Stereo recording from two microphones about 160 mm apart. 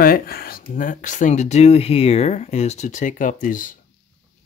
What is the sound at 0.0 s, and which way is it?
Speech, 65° left (ahead or behind).